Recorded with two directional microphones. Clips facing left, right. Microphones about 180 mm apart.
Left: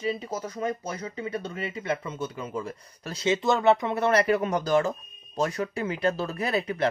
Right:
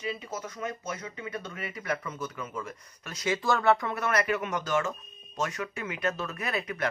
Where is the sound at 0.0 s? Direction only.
35° left (ahead or behind).